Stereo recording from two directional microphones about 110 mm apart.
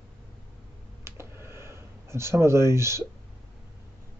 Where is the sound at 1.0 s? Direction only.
25° right (ahead or behind).